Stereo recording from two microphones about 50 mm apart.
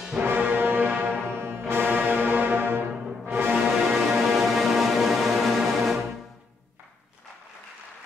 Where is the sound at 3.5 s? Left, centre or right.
Centre.